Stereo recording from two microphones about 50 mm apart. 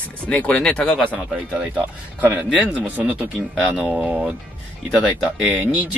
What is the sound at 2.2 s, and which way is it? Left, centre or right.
Speech, right.